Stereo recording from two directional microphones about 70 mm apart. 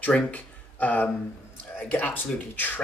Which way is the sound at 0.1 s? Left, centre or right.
Centre.